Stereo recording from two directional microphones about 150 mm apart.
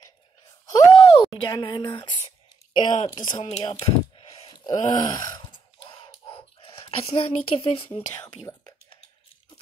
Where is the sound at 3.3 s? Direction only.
45° left (ahead or behind).